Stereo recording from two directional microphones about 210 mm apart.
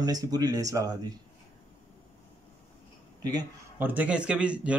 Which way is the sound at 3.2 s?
15° right (ahead or behind).